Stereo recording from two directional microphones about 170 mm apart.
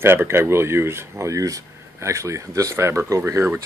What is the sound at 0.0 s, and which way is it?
Speech, 15° right (ahead or behind).